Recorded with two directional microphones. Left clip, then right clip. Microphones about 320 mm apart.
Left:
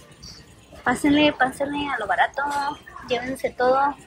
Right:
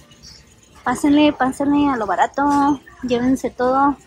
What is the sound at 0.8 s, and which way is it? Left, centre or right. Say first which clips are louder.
Speech: right 3 dB; centre.